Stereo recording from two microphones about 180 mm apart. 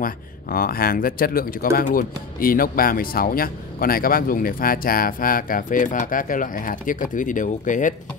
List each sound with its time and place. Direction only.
0.0 s speech: 55° left (ahead or behind)